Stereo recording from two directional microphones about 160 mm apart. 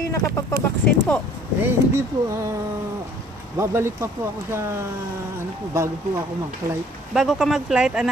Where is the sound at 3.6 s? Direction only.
15° right (ahead or behind).